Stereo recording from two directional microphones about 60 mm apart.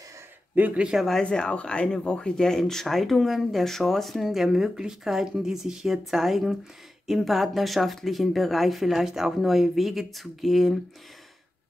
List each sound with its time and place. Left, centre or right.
0.6 s speech: right
0.9 s speech: centre
1.2 s speech: centre